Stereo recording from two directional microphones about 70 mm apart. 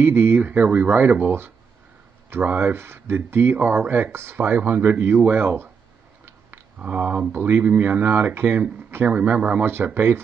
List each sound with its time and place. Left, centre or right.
0.0 s speech: right
2.4 s speech: right
2.7 s speech: right
6.8 s speech: right
9.9 s speech: right